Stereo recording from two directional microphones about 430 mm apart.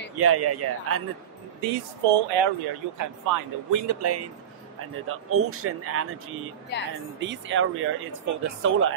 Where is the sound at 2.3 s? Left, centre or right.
Right.